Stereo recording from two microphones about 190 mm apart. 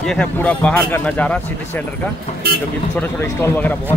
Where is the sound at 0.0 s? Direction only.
5° left (ahead or behind).